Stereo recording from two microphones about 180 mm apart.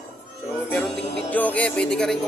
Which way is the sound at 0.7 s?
5° left (ahead or behind).